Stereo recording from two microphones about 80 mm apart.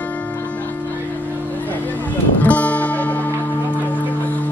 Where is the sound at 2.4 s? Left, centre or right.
Centre.